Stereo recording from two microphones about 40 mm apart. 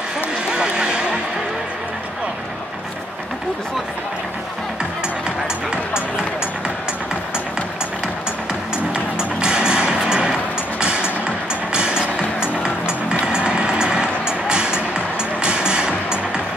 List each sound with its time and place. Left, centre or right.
0.5 s vehicle: centre
9.4 s music: right
13.3 s music: right